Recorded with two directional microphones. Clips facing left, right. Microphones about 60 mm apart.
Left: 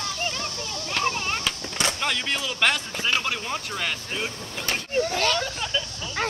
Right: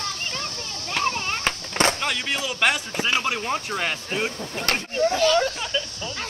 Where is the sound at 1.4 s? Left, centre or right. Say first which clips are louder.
Right 5 dB; right.